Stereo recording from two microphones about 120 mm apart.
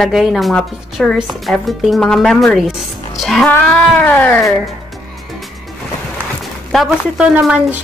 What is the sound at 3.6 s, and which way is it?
Cat, 10° left (ahead or behind).